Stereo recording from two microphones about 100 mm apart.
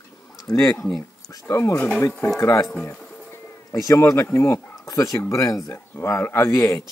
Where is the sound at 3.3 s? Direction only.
35° left (ahead or behind).